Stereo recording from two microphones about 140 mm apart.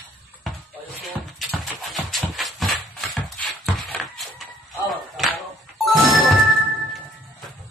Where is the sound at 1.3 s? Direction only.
Centre (ahead or behind).